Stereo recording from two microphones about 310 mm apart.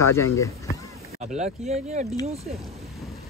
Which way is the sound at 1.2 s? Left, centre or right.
Right.